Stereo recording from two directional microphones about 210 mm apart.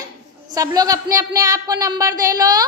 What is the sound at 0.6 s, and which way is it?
Speech, 15° right (ahead or behind).